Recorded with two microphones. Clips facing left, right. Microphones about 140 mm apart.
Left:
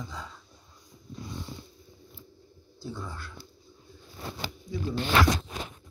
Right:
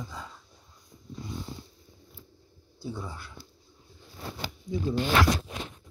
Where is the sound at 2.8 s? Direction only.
10° right (ahead or behind).